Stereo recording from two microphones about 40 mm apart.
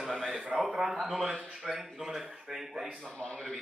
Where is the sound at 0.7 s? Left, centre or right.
Centre.